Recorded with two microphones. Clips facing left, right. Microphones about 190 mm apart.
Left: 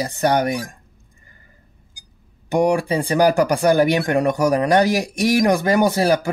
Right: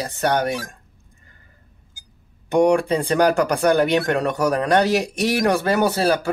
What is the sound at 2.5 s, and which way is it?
Speech, 10° left (ahead or behind).